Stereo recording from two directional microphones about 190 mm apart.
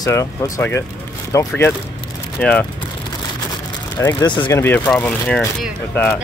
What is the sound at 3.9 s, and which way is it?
Speech, 20° left (ahead or behind).